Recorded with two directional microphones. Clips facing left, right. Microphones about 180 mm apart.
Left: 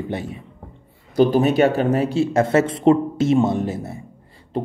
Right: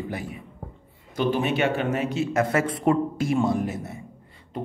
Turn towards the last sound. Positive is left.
turn(degrees=30)  # may be behind; listen again after turning